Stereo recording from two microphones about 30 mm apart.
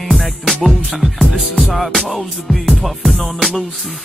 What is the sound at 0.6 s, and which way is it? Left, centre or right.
Music, centre.